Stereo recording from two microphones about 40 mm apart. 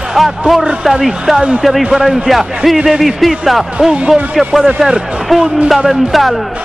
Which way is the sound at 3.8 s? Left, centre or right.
Centre.